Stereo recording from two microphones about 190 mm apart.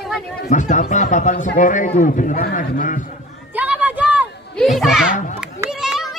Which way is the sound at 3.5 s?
10° right (ahead or behind).